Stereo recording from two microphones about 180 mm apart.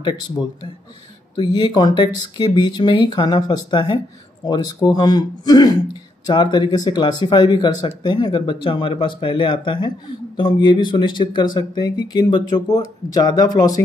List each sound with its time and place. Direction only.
1.3 s speech: 25° left (ahead or behind)